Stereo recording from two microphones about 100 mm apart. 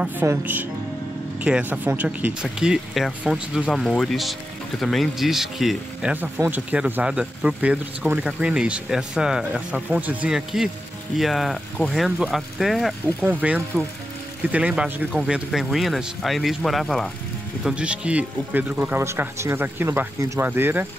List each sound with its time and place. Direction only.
0.3 s speech: 20° right (ahead or behind)
2.4 s speech: 5° right (ahead or behind)
6.2 s speech: 20° right (ahead or behind); by 12.9 s centre (ahead or behind)
13.2 s speech: 15° right (ahead or behind); by 17.1 s 5° left (ahead or behind)
17.6 s speech: 10° right (ahead or behind)
19.0 s speech: 30° right (ahead or behind)